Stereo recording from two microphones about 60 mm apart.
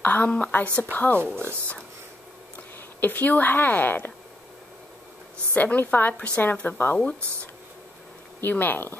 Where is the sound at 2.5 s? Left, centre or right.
Left.